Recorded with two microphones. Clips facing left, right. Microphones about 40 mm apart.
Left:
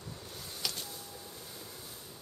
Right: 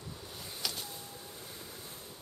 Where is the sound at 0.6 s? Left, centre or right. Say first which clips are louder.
Even; centre.